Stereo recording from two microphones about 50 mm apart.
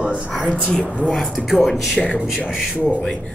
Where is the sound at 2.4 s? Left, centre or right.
Centre.